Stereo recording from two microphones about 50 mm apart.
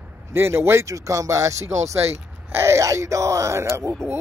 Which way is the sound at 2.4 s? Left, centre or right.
Right.